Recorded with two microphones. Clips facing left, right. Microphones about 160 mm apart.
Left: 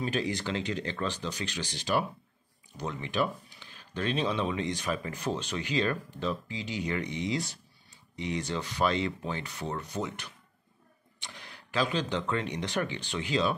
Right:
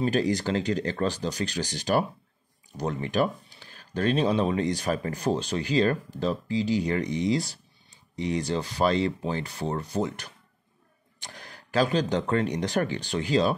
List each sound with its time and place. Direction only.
0.0 s speech: 40° right (ahead or behind)